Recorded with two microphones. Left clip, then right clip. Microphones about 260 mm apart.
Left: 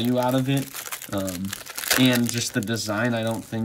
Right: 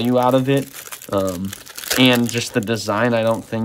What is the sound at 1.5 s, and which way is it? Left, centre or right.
Crumpling, centre.